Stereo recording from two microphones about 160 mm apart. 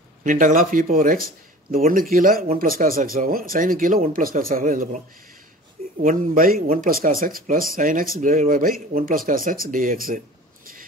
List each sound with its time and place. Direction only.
0.2 s speech: 55° right (ahead or behind)
6.0 s speech: 60° right (ahead or behind)